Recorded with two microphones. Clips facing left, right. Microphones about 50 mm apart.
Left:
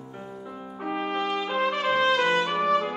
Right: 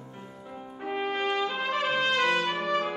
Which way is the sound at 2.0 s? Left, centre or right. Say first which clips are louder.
Left 4 dB; centre.